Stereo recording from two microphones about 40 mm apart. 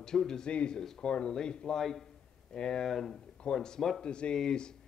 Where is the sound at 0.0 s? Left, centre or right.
Centre.